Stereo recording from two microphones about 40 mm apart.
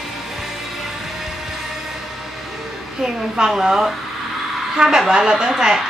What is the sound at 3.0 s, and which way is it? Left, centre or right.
Speech, centre.